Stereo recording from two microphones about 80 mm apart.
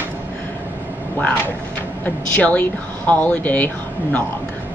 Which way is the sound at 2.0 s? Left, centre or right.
Centre.